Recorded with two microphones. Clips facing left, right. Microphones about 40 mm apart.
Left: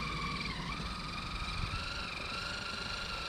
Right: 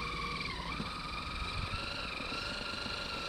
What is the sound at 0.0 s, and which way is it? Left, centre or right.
Vehicle, centre.